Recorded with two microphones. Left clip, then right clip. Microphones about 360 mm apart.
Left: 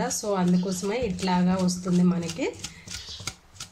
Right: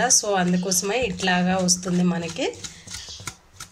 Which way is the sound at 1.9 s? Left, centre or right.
Right.